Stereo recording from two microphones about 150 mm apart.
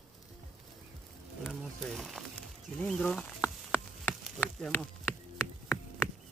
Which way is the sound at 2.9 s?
5° left (ahead or behind).